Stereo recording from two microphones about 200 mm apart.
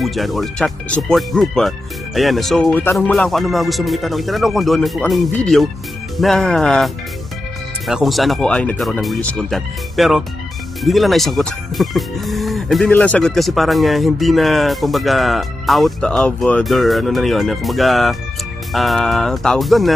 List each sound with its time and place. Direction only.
0.0 s speech: centre (ahead or behind)